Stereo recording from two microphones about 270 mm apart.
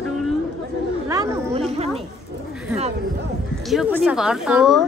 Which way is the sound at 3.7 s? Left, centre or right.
Centre.